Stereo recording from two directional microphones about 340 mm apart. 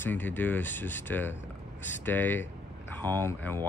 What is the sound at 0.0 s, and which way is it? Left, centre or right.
Speech, centre.